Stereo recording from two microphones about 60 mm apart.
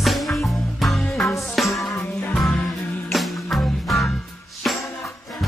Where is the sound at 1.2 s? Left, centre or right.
Left.